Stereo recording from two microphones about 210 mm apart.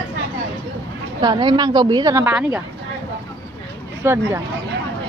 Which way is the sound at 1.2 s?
20° right (ahead or behind).